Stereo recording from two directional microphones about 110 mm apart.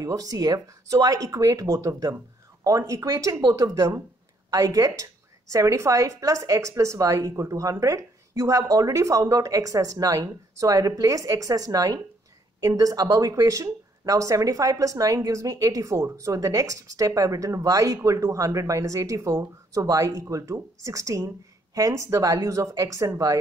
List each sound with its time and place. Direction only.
0.0 s speech: 35° right (ahead or behind)